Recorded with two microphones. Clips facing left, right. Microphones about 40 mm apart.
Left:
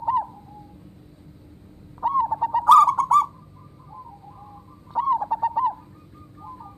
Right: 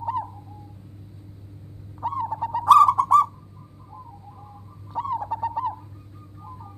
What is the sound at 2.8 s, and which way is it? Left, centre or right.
Owl, centre.